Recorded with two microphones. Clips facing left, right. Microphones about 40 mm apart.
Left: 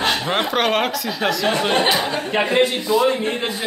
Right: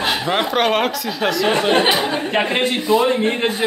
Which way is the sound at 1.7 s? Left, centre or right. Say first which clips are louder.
Right 2 dB; centre.